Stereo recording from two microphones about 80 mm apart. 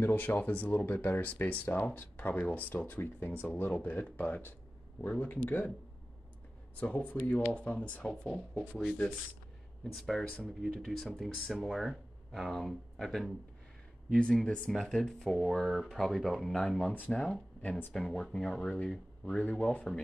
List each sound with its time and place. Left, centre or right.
0.0 s speech: left
6.8 s speech: centre
14.1 s speech: centre
17.6 s speech: left
17.9 s speech: centre